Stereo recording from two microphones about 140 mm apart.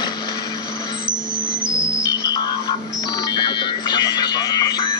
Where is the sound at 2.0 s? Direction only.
30° left (ahead or behind).